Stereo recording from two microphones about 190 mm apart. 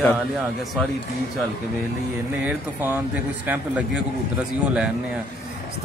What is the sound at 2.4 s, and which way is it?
A man's voice, 10° right (ahead or behind).